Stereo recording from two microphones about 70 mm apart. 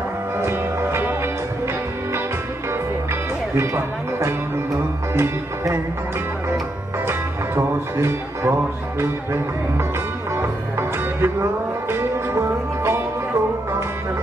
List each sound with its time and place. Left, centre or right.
0.4 s music: right
3.5 s speech: right
7.1 s speech: right
10.3 s music: right